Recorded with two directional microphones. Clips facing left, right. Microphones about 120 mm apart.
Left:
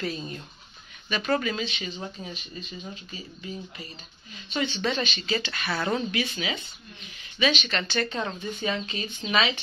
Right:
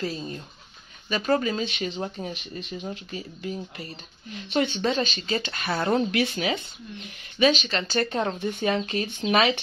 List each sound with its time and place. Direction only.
1.0 s speech: 35° right (ahead or behind)
1.6 s a woman's voice: 50° right (ahead or behind)
4.9 s a woman's voice: 40° right (ahead or behind)
8.4 s speech: 55° right (ahead or behind)